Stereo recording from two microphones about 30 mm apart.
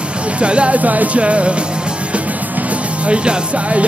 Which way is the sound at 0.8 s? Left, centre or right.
Right.